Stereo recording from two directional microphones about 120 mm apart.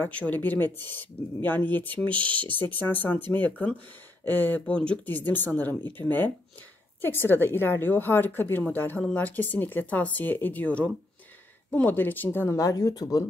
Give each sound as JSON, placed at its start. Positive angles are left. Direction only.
{"t": 0.0, "sound": "speech", "side_deg": 15}
{"t": 2.0, "sound": "speech", "side_deg": -45}
{"t": 2.6, "sound": "speech", "side_deg": 15}